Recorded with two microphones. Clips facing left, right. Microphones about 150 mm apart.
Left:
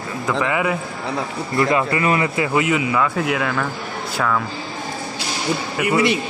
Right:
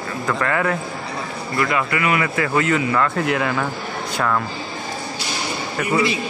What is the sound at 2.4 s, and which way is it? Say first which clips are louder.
Speech: even; 15° left (ahead or behind).